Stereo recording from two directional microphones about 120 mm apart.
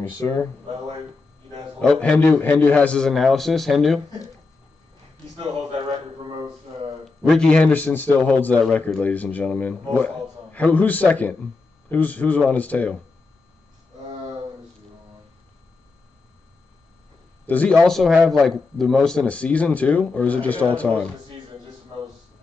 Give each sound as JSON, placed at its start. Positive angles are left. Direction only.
{"t": 0.0, "sound": "speech", "side_deg": 20}
{"t": 1.8, "sound": "a man's voice", "side_deg": 5}
{"t": 7.2, "sound": "a man's voice", "side_deg": 5}
{"t": 17.5, "sound": "a man's voice", "side_deg": 10}
{"t": 17.8, "sound": "a man's voice", "side_deg": 0}